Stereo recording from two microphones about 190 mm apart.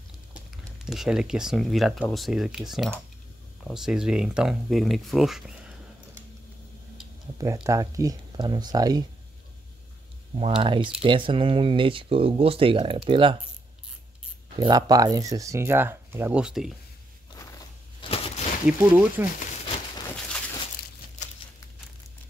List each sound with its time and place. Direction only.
0.3 s speech: centre (ahead or behind)
7.3 s speech: 20° right (ahead or behind)
10.3 s speech: 30° right (ahead or behind)
14.6 s speech: 20° right (ahead or behind); by 16.7 s 5° right (ahead or behind)
18.0 s a sound: 30° left (ahead or behind)
18.7 s speech: 10° right (ahead or behind)